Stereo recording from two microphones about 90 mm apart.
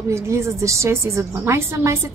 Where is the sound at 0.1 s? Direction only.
30° right (ahead or behind).